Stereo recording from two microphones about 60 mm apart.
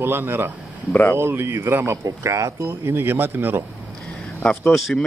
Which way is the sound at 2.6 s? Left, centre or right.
Right.